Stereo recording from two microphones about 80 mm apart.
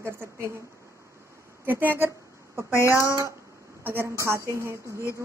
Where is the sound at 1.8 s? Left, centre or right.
Right.